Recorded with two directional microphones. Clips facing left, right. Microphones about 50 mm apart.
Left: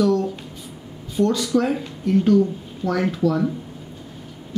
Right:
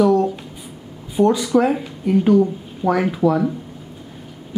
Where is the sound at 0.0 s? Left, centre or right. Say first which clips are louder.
Right 4 dB; centre.